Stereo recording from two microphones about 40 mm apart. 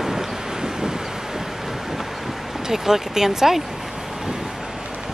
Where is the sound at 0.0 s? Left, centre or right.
Centre.